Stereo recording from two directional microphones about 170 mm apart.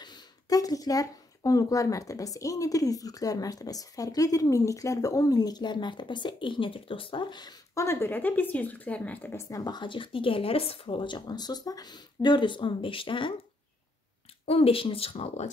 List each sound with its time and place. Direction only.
0.0 s speech: 20° left (ahead or behind)
9.7 s speech: 30° left (ahead or behind)
14.4 s speech: 35° left (ahead or behind)